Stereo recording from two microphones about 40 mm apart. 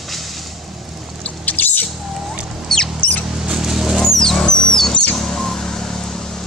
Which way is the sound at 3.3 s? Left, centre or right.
Centre.